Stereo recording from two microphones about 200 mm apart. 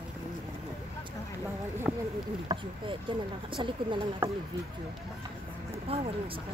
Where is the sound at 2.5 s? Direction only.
25° right (ahead or behind).